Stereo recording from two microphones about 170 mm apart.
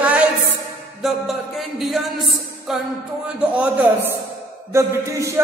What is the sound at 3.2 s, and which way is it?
A man's voice, 5° right (ahead or behind).